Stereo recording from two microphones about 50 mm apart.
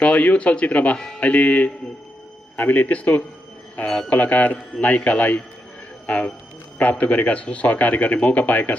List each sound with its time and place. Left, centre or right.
0.0 s speech: left